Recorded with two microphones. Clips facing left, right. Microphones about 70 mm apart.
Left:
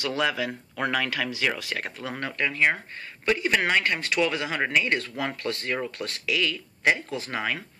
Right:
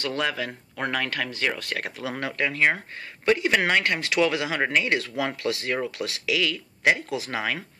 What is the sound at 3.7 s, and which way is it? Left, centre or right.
Speech, right.